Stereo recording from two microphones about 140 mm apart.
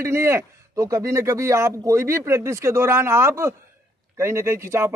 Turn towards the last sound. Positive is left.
turn(degrees=-20)  # may be behind; listen again after turning